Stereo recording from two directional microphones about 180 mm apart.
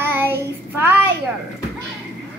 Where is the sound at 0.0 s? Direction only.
10° right (ahead or behind).